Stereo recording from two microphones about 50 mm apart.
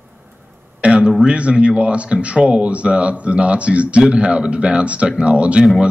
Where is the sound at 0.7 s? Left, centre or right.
Right.